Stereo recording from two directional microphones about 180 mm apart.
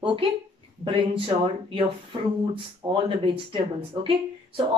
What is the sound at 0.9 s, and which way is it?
Speech, 30° right (ahead or behind).